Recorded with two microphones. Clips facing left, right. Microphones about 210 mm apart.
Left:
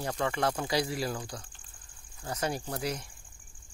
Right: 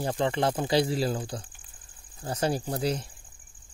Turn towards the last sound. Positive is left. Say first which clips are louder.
# right 6 dB
turn(degrees=-30)  # may be behind; listen again after turning